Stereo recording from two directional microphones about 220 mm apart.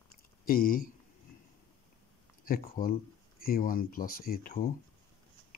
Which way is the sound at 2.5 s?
40° left (ahead or behind).